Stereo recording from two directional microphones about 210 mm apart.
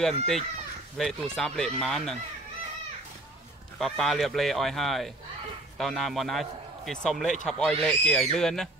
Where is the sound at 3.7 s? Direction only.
Centre (ahead or behind).